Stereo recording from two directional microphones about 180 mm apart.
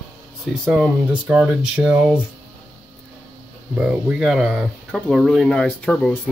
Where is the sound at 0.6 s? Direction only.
5° right (ahead or behind).